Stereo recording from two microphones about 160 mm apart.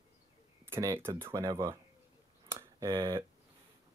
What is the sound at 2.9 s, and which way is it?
Speech, 30° right (ahead or behind).